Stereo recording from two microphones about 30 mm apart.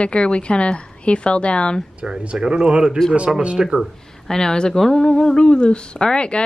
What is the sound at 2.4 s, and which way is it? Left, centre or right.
Speech, right.